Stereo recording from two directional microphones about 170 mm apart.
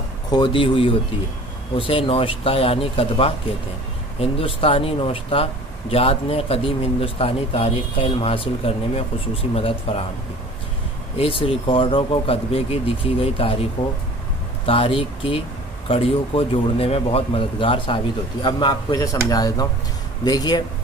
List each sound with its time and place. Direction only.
0.3 s speech: 30° left (ahead or behind)
11.1 s speech: 35° left (ahead or behind)
14.7 s speech: 30° left (ahead or behind)